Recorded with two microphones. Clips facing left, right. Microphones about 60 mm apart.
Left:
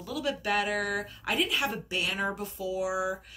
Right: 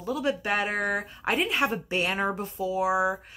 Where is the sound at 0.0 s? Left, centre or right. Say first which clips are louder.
Right 4 dB; right.